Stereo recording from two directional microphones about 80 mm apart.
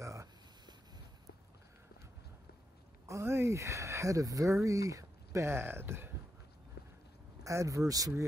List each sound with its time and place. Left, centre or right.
0.0 s a sound: right
3.1 s speech: right
7.4 s speech: right